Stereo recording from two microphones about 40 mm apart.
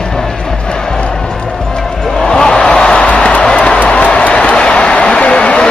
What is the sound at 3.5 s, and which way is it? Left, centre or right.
Music, left.